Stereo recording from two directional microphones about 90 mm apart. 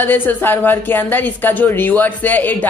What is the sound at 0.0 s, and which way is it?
Speech, 20° left (ahead or behind).